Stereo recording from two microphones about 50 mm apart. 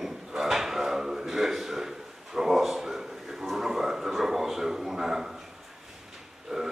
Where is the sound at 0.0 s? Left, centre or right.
Centre.